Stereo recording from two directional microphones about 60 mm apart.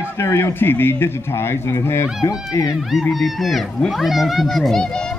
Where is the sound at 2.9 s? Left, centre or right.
Centre.